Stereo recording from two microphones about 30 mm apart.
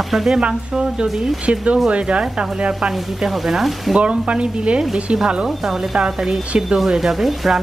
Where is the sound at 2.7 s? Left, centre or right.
Centre.